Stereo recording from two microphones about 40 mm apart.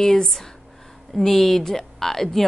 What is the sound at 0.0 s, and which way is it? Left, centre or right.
A woman's voice, centre.